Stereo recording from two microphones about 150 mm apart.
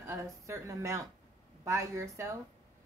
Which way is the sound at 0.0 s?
20° right (ahead or behind).